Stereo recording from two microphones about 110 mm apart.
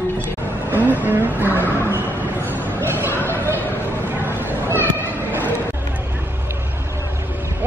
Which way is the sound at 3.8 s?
20° right (ahead or behind).